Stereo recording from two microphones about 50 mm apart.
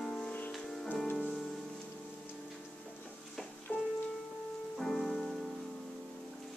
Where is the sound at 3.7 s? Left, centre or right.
Right.